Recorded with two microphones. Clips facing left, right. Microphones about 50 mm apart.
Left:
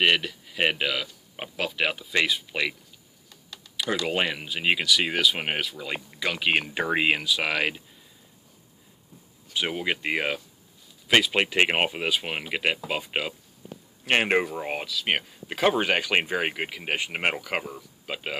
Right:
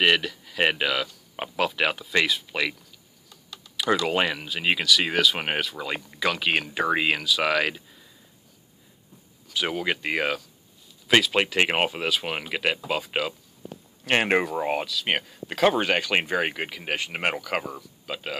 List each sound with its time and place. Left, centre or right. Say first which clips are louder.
0.0 s speech: right 1 dB; centre
4.0 s speech: right 2 dB; centre
6.3 s speech: even; centre
9.5 s speech: right 1 dB; centre